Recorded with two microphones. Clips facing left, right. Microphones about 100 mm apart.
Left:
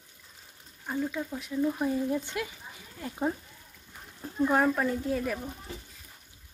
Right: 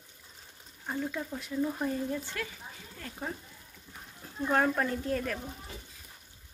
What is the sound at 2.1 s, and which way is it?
Frying, 15° left (ahead or behind).